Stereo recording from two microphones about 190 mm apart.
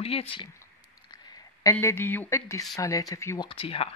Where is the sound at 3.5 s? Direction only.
30° left (ahead or behind).